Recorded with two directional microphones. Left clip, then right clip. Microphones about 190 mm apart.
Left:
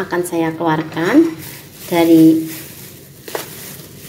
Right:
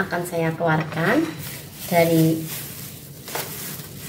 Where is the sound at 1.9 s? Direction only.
45° left (ahead or behind).